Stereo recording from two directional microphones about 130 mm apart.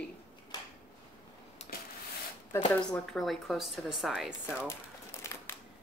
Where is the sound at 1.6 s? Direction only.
60° left (ahead or behind).